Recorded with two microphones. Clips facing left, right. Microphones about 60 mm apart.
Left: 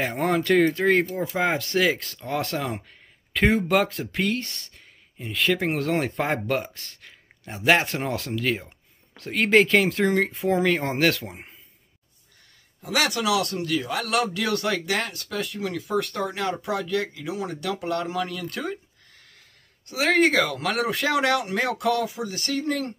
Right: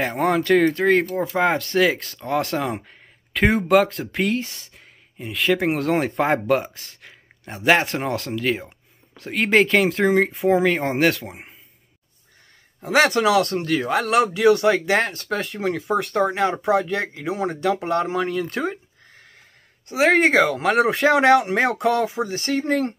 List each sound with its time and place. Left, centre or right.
0.0 s speech: centre
10.1 s speech: centre
12.8 s speech: right